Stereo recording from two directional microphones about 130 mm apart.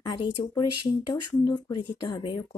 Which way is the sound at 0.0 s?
35° left (ahead or behind).